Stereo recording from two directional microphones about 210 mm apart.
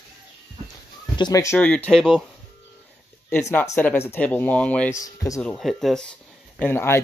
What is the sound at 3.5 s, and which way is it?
Speech, 10° left (ahead or behind).